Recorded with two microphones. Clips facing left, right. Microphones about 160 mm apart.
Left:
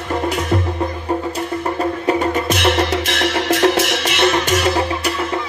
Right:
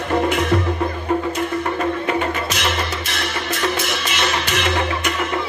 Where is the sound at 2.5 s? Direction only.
60° left (ahead or behind).